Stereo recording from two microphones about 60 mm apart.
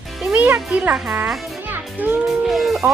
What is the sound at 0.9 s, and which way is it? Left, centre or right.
Speech, centre.